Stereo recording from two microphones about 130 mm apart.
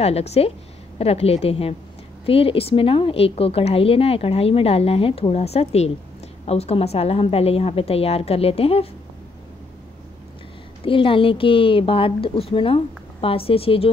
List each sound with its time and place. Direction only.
0.0 s a woman's voice: 55° left (ahead or behind)
10.9 s a woman's voice: 45° left (ahead or behind)